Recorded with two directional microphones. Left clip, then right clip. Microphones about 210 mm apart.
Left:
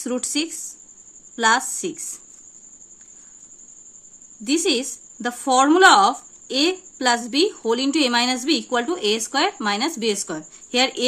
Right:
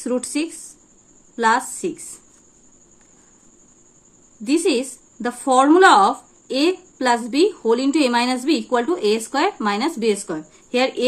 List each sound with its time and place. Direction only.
0.0 s speech: 15° left (ahead or behind)
4.5 s speech: 15° left (ahead or behind)